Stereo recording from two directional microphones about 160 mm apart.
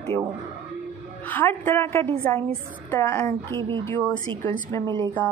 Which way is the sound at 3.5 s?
30° right (ahead or behind).